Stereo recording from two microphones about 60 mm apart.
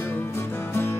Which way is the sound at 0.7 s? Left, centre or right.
Left.